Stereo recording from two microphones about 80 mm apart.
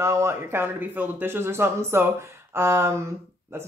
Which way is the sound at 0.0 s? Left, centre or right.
Right.